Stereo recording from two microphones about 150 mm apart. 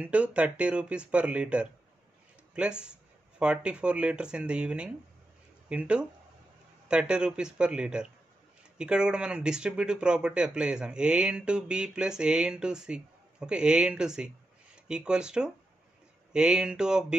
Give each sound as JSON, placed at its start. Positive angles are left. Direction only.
{"t": 0.0, "sound": "speech", "side_deg": -10}